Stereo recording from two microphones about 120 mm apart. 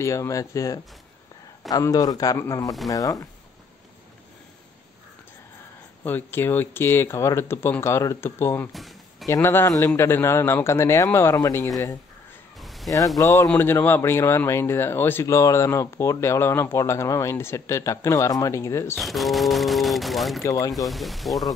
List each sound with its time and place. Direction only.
0.0 s a man's voice: 25° left (ahead or behind)
6.0 s speech: 15° left (ahead or behind)
8.7 s a sound: centre (ahead or behind)
9.3 s speech: 20° left (ahead or behind)
12.5 s a sound: centre (ahead or behind)
13.2 s speech: 25° left (ahead or behind)
18.9 s speech: centre (ahead or behind)
20.4 s speech: 30° left (ahead or behind)
20.7 s speech: centre (ahead or behind)